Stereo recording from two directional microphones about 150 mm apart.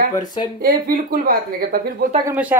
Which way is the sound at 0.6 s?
75° right (ahead or behind).